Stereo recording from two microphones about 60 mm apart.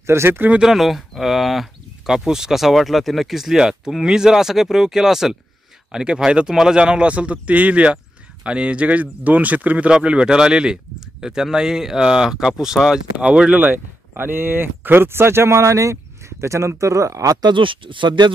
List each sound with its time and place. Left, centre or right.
0.0 s speech: right
0.6 s speech: centre
13.6 s speech: right